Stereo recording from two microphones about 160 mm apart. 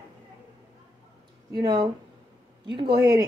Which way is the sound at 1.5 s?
25° right (ahead or behind).